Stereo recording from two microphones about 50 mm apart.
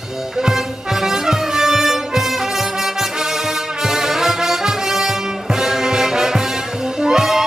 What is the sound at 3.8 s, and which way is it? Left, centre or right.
Music, centre.